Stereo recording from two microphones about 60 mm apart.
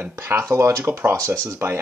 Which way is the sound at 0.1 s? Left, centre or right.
Right.